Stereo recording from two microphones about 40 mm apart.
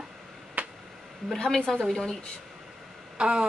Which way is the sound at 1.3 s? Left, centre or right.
Centre.